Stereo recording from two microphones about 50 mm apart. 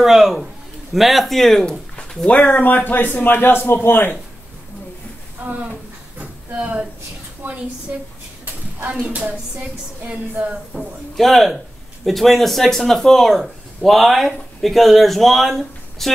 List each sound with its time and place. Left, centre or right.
0.0 s a man's voice: centre
2.2 s a man's voice: left
6.1 s a sound: right
7.4 s a woman's voice: right
9.0 s speech: right
11.1 s speech: centre